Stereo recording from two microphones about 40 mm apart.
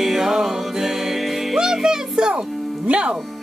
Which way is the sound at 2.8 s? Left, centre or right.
Right.